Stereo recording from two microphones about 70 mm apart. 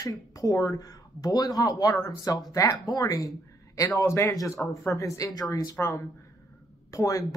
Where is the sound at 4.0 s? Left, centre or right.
Left.